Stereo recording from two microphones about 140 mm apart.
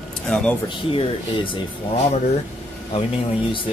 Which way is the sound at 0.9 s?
35° left (ahead or behind).